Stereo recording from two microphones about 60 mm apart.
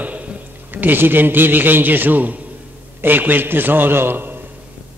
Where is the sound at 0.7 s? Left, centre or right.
Right.